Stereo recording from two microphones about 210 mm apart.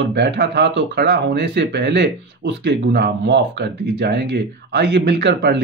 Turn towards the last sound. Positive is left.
turn(degrees=-55)  # may be behind; listen again after turning